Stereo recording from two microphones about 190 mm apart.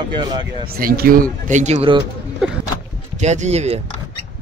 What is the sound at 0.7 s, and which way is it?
Speech, 55° right (ahead or behind).